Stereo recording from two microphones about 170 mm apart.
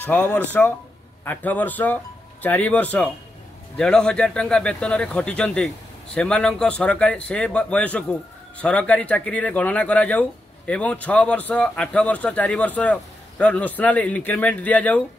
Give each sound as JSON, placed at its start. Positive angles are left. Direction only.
{"t": 0.0, "sound": "a man's voice", "side_deg": 10}